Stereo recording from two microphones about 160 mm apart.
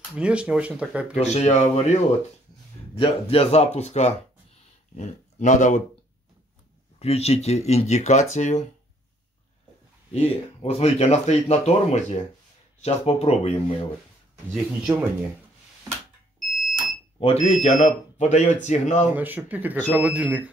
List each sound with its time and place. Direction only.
0.1 s speech: 5° right (ahead or behind)
1.1 s speech: 45° left (ahead or behind)
3.0 s speech: 40° left (ahead or behind)
7.0 s speech: 40° left (ahead or behind)
10.1 s speech: 40° left (ahead or behind)
14.5 s speech: 5° right (ahead or behind)
16.3 s fire alarm: centre (ahead or behind)
17.2 s speech: 40° left (ahead or behind)
19.1 s speech: 10° right (ahead or behind)